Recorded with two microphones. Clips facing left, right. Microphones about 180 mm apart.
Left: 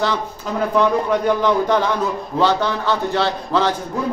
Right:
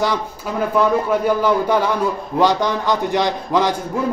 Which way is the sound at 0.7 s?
5° right (ahead or behind).